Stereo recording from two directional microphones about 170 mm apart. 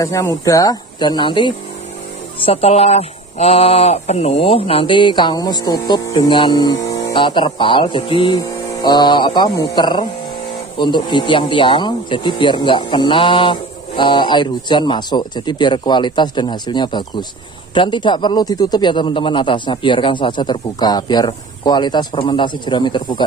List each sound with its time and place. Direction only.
0.0 s speech: 20° left (ahead or behind)